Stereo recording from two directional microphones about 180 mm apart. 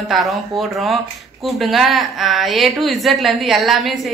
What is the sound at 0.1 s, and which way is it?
Speech, centre (ahead or behind).